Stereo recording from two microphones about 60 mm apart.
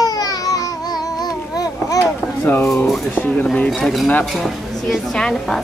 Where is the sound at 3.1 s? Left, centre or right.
Left.